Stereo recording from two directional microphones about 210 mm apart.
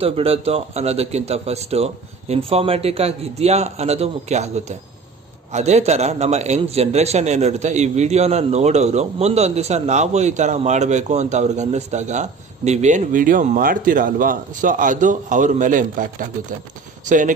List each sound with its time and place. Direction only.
0.0 s a man's voice: 25° right (ahead or behind)